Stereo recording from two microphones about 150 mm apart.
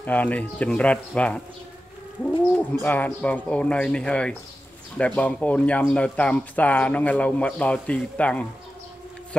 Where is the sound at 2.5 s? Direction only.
15° left (ahead or behind).